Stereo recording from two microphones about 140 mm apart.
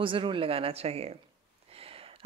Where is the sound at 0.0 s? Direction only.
35° right (ahead or behind).